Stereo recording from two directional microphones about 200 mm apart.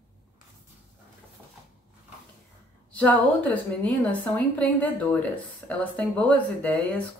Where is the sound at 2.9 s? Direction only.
5° left (ahead or behind).